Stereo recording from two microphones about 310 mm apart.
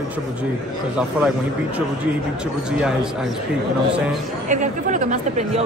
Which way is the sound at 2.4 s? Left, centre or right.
Centre.